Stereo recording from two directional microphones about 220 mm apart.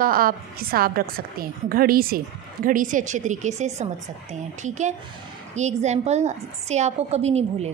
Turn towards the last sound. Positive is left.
turn(degrees=-30)  # may be behind; listen again after turning